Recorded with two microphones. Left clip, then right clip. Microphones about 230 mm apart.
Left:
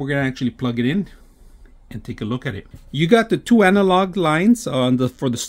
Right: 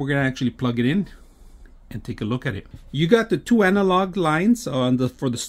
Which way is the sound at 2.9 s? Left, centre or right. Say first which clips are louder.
Left 3 dB; centre.